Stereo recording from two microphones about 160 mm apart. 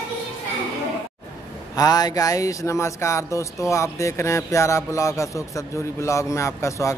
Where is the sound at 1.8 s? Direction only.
25° left (ahead or behind).